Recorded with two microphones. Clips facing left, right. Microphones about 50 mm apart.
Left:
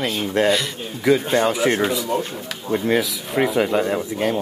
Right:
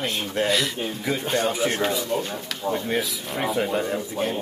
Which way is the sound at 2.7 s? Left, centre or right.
Left.